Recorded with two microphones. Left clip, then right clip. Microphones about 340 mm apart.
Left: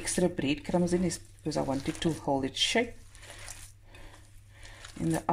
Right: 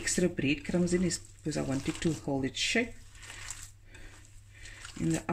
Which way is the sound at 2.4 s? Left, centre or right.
Centre.